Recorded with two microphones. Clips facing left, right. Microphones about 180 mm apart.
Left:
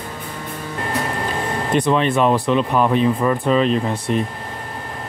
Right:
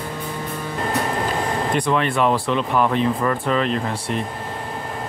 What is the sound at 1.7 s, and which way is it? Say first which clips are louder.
Speech: left 5 dB; 20° left (ahead or behind).